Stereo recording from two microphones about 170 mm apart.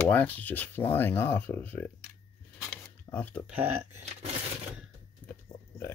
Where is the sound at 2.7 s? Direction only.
10° left (ahead or behind).